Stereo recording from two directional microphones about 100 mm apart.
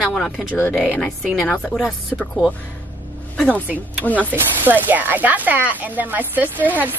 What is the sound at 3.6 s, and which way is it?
Speech, 15° right (ahead or behind).